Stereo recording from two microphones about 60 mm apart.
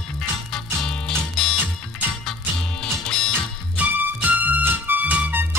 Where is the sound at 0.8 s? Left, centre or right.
Centre.